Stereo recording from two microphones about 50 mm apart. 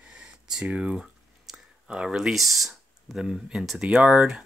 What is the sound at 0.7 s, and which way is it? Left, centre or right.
Speech, right.